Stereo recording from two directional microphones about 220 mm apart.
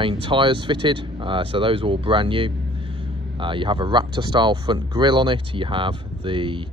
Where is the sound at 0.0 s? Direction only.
25° right (ahead or behind).